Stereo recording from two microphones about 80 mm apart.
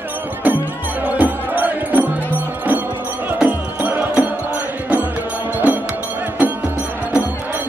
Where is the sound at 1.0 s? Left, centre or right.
Centre.